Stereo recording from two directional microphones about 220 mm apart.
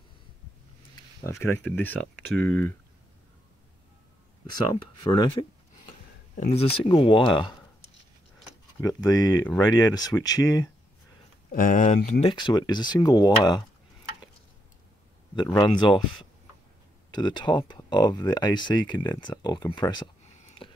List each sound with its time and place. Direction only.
0.9 s speech: 10° left (ahead or behind)
4.5 s speech: 20° left (ahead or behind)
5.9 s speech: 35° left (ahead or behind)
8.8 s speech: 15° left (ahead or behind)
11.5 s speech: 35° left (ahead or behind); by 13.7 s 20° left (ahead or behind)
15.3 s speech: 20° left (ahead or behind)
17.1 s speech: 20° left (ahead or behind)
20.4 s a sound: 25° left (ahead or behind)